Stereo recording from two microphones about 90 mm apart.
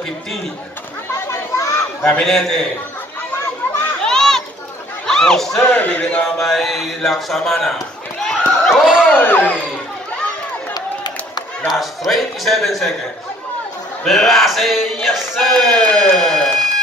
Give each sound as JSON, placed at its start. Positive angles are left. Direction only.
{"t": 1.2, "sound": "chatter", "side_deg": 35}
{"t": 2.0, "sound": "music", "side_deg": 10}
{"t": 4.0, "sound": "children playing", "side_deg": 5}
{"t": 5.0, "sound": "speech", "side_deg": 5}
{"t": 5.7, "sound": "speech", "side_deg": 15}
{"t": 6.4, "sound": "music", "side_deg": 5}
{"t": 8.3, "sound": "a sound", "side_deg": 0}
{"t": 9.1, "sound": "speech", "side_deg": 20}
{"t": 10.7, "sound": "a sound", "side_deg": 50}
{"t": 11.6, "sound": "music", "side_deg": 0}
{"t": 14.0, "sound": "music", "side_deg": 0}
{"t": 16.2, "sound": "a sound", "side_deg": 5}